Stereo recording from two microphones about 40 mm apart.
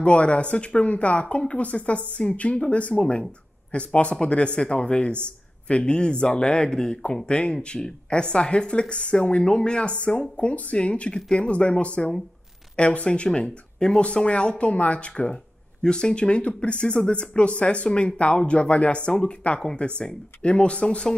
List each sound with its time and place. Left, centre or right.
0.0 s speech: left